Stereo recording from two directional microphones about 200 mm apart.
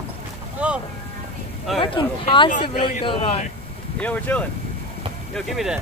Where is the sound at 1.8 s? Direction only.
25° left (ahead or behind).